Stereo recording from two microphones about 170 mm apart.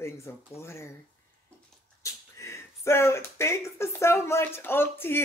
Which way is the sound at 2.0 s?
15° left (ahead or behind).